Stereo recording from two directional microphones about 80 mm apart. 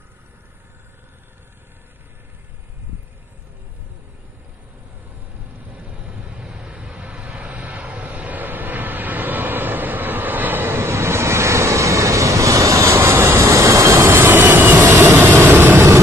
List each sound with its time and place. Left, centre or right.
5.6 s vehicle: centre; by 12.9 s right
12.9 s vehicle: right